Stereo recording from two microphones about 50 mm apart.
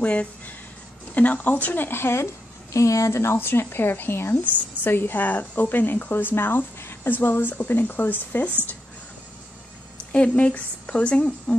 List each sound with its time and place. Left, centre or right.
0.0 s a woman's voice: left
1.9 s speech: left
10.1 s a woman's voice: left